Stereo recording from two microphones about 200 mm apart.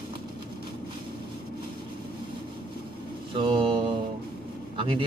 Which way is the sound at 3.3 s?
25° right (ahead or behind).